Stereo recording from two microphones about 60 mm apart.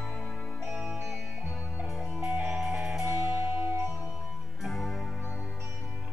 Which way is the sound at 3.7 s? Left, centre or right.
Right.